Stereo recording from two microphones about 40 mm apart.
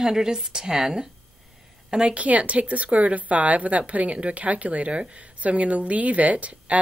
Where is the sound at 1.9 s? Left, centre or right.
Right.